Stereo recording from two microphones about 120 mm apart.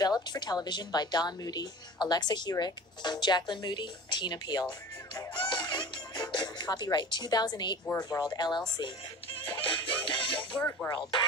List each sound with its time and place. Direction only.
0.0 s a woman's voice: 35° left (ahead or behind)
9.4 s music: 45° left (ahead or behind)
10.9 s speech: 40° left (ahead or behind)